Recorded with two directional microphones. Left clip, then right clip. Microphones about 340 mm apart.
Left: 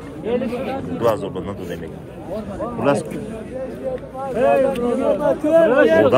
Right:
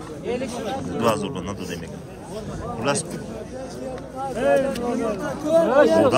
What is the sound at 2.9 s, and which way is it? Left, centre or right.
Speech, centre.